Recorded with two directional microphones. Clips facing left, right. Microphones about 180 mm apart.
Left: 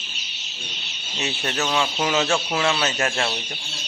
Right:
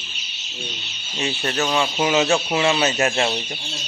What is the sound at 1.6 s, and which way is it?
Speech, 5° right (ahead or behind).